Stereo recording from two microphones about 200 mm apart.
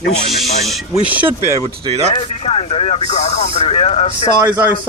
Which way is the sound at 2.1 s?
30° left (ahead or behind).